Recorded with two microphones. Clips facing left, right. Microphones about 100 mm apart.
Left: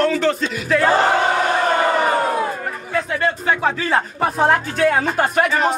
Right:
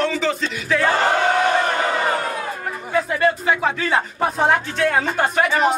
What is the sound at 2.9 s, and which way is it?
Speech, 5° right (ahead or behind).